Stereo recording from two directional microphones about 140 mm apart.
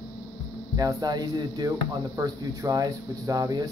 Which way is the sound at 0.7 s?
25° right (ahead or behind).